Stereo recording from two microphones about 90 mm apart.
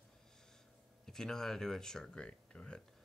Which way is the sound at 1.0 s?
5° left (ahead or behind).